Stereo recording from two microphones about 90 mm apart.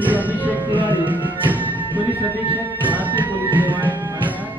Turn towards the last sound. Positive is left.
turn(degrees=-20)  # may be behind; listen again after turning